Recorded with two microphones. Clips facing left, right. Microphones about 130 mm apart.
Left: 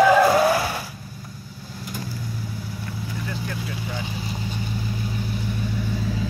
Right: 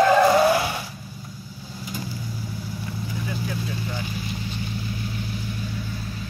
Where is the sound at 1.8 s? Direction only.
Centre (ahead or behind).